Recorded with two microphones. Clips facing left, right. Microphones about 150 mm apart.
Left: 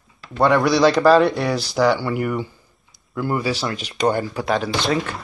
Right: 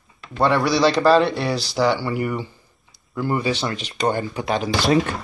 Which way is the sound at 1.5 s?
50° left (ahead or behind).